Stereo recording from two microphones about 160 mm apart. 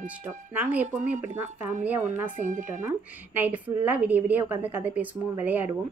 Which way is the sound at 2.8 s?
10° right (ahead or behind).